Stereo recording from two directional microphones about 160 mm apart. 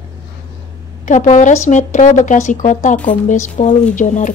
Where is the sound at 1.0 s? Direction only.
50° left (ahead or behind).